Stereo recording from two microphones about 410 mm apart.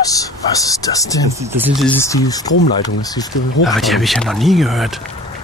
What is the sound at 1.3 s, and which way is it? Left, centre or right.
Speech, centre.